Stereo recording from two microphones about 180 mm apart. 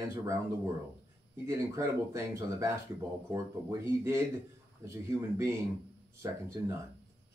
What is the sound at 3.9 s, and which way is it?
Speech, 15° right (ahead or behind).